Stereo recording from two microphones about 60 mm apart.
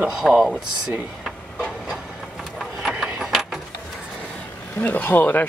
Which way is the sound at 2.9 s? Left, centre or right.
Centre.